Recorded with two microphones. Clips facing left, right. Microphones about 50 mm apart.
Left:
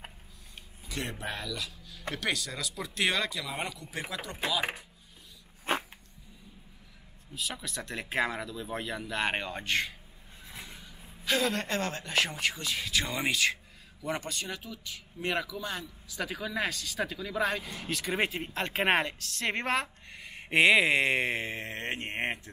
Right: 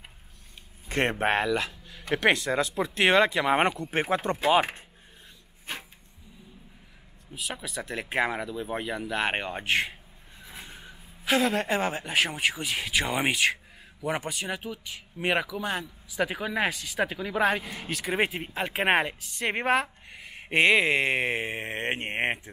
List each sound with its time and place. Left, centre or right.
0.8 s speech: right
3.4 s speech: right
5.7 s dog: left
7.3 s speech: centre
9.3 s speech: centre
10.4 s vehicle: right
11.2 s speech: centre
21.5 s speech: right